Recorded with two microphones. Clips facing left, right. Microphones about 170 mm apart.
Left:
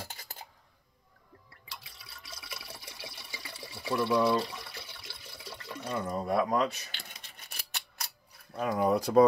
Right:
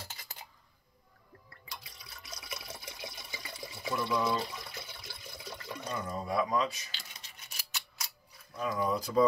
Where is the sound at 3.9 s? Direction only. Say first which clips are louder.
Left 5 dB; 70° left (ahead or behind).